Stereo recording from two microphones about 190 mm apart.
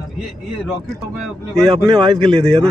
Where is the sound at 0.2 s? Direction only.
Centre (ahead or behind).